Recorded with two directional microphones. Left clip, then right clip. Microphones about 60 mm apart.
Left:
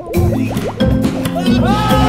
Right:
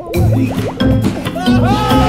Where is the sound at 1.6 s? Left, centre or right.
Right.